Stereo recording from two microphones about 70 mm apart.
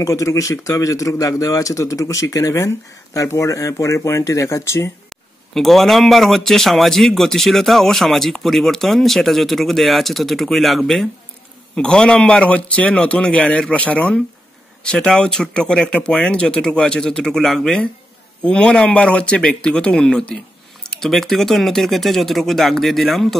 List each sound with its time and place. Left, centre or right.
0.0 s speech: left
5.5 s a man's voice: centre